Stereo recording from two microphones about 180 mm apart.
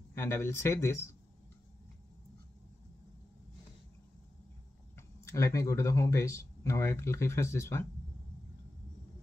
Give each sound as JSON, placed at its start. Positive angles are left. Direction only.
{"t": 0.1, "sound": "speech", "side_deg": 15}
{"t": 4.9, "sound": "speech", "side_deg": 15}